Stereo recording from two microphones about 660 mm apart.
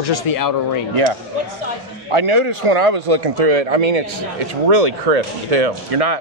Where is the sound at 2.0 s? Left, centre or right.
Right.